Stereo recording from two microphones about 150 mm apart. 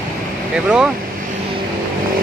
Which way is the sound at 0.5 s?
5° right (ahead or behind).